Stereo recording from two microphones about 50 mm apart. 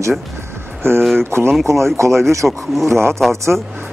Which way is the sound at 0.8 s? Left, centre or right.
Right.